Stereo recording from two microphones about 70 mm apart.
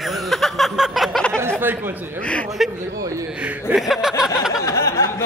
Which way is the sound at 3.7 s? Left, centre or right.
Centre.